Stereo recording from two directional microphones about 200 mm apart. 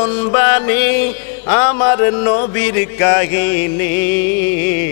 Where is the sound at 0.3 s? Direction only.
15° left (ahead or behind).